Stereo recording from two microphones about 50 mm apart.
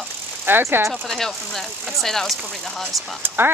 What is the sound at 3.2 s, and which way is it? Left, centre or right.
Speech, right.